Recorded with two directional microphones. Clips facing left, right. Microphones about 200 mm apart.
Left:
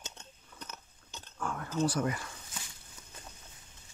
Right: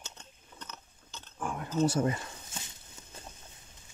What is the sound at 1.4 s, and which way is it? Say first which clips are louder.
Dog: right 3 dB; 15° right (ahead or behind).